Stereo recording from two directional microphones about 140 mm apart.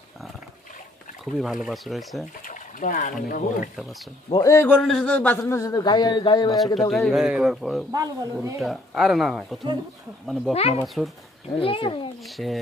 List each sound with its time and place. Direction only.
1.4 s speech: centre (ahead or behind)
2.4 s speech: 70° left (ahead or behind)
4.3 s a man's voice: 25° left (ahead or behind)
4.8 s speech: 5° left (ahead or behind)
5.4 s a man's voice: 20° left (ahead or behind)
6.9 s speech: centre (ahead or behind)
7.9 s speech: 25° right (ahead or behind)
8.5 s speech: centre (ahead or behind)
10.5 s a man's voice: 45° left (ahead or behind)
12.4 s speech: 5° left (ahead or behind)